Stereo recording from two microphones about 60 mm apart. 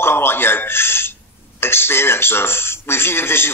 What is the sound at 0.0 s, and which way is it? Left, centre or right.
Speech, left.